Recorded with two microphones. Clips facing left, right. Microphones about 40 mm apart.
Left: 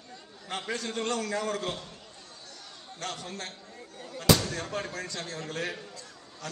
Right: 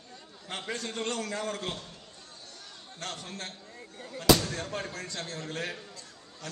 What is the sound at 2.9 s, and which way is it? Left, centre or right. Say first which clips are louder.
Speech: left 2 dB; left.